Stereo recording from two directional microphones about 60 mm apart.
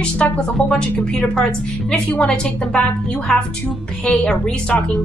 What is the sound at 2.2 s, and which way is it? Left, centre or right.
Speech, centre.